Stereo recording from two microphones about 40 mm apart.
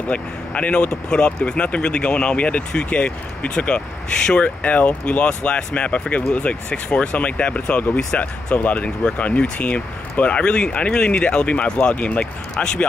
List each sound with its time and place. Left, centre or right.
0.1 s speech: left
4.4 s speech: left